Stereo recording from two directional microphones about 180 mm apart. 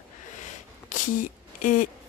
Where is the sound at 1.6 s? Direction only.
45° left (ahead or behind).